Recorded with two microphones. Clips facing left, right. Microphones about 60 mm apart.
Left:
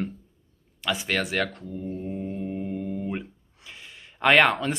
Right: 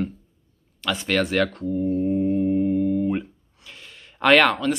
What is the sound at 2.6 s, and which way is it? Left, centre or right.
Speech, centre.